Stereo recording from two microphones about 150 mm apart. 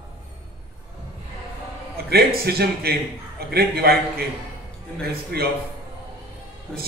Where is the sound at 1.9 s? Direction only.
90° right.